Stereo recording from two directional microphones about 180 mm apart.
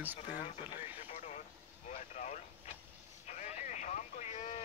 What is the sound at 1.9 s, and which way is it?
Speech, 40° left (ahead or behind).